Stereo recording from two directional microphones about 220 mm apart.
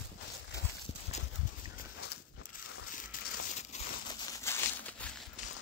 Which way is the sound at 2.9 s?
35° left (ahead or behind).